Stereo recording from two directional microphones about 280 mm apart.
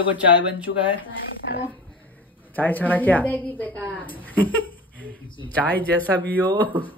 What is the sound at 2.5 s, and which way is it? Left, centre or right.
A woman's voice, centre.